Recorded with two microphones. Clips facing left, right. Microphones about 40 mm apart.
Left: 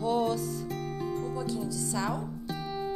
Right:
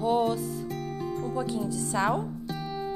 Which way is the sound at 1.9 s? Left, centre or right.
Right.